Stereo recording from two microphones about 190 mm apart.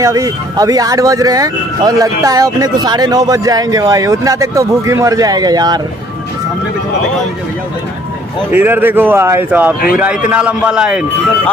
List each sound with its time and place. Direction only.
0.0 s speech: 15° right (ahead or behind)
8.5 s a man's voice: 10° right (ahead or behind)